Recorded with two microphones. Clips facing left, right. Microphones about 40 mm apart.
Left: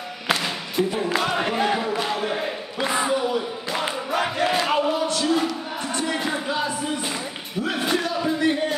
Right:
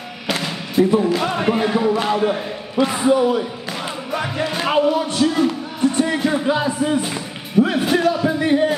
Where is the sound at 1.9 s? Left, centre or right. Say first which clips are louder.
Right 6 dB; centre.